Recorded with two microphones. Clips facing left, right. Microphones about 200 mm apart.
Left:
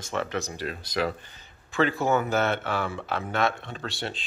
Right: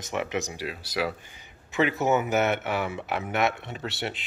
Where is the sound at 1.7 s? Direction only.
20° right (ahead or behind).